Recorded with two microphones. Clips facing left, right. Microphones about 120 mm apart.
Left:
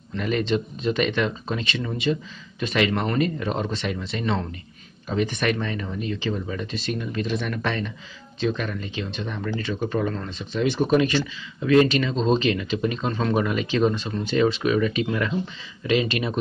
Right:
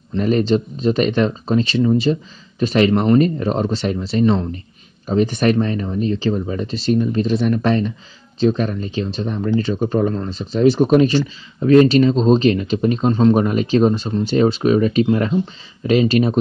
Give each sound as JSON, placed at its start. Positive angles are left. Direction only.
{"t": 0.1, "sound": "speech", "side_deg": -35}